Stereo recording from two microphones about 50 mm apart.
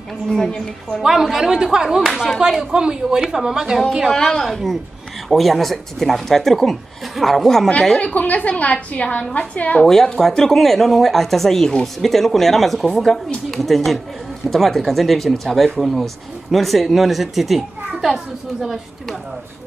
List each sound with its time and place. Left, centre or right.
0.3 s a woman's voice: centre
1.0 s speech: centre
2.7 s speech: centre
4.1 s a woman's voice: centre
8.0 s a woman's voice: left
9.8 s speech: centre